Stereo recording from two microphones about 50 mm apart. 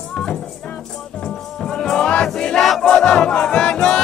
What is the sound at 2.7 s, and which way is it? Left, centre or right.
Music, centre.